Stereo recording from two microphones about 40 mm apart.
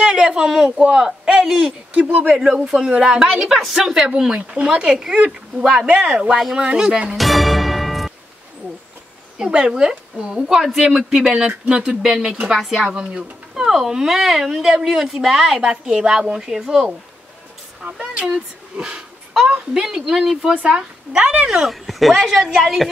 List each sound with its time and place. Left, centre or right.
0.0 s speech: right
0.7 s a man's voice: right
1.6 s speech: right
4.9 s speech: centre
7.2 s music: centre
9.4 s speech: right
10.4 s speech: centre
11.1 s speech: centre
12.8 s speech: right
17.8 s speech: right
18.8 s speech: right
20.6 s speech: right
21.5 s speech: centre